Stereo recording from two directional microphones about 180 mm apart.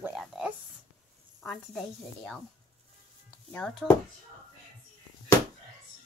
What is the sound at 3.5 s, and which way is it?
Speech, 5° left (ahead or behind).